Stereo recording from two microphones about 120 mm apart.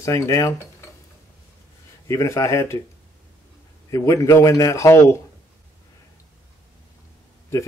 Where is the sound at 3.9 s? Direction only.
25° left (ahead or behind).